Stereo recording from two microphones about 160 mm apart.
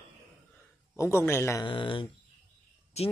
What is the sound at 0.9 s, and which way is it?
Speech, 15° left (ahead or behind).